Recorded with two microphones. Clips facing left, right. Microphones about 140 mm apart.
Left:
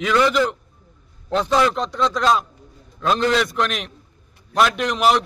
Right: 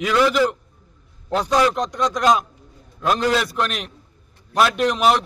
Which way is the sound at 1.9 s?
15° right (ahead or behind).